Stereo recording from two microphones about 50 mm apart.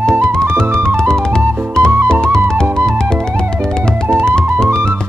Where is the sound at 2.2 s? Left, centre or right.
Centre.